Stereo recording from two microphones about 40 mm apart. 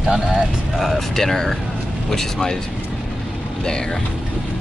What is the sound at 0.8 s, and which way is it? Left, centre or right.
Speech, centre.